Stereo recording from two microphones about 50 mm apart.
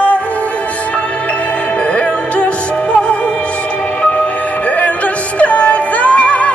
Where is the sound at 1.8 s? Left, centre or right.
Left.